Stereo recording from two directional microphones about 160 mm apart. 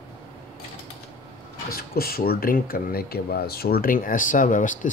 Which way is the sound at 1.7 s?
70° left (ahead or behind).